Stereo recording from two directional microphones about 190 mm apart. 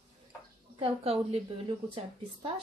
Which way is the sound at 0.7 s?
30° right (ahead or behind).